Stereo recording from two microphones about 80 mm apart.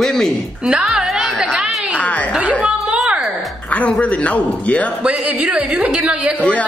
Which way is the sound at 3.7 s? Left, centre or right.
Centre.